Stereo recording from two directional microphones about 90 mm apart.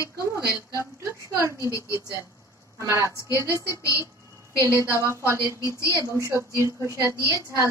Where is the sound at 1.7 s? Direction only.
35° left (ahead or behind).